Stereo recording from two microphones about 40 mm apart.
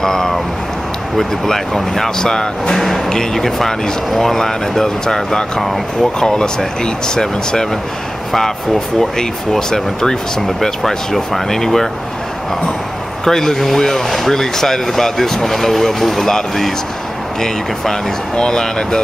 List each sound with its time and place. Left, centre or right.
0.0 s a sound: centre
1.1 s speech: centre
13.2 s speech: centre
18.3 s speech: centre